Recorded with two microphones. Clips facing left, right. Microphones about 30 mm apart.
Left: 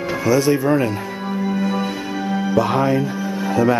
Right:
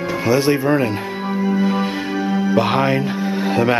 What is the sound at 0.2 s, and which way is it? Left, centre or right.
Speech, right.